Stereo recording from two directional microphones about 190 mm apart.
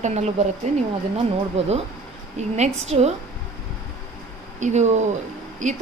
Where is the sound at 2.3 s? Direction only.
35° right (ahead or behind).